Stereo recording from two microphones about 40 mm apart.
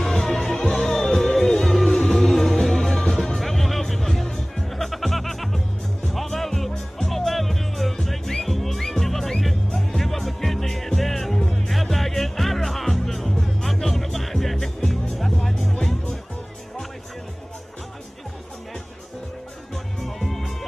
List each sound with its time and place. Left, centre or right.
0.0 s music: centre
0.3 s music: centre
0.8 s music: centre
20.2 s music: centre